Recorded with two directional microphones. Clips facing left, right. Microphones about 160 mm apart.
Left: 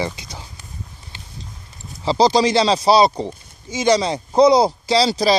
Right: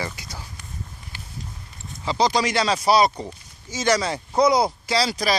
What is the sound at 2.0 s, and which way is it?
Speech, 30° left (ahead or behind).